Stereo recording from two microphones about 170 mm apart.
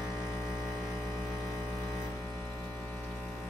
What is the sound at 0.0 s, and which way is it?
Vehicle, centre (ahead or behind).